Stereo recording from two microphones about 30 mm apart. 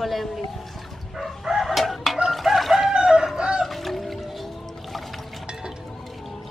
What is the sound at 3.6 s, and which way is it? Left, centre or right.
Music, centre.